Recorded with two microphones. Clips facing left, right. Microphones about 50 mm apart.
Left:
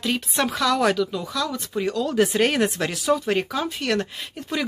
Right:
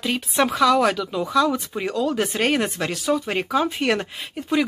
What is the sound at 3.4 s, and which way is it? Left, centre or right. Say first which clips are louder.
A woman's voice: right 5 dB; centre.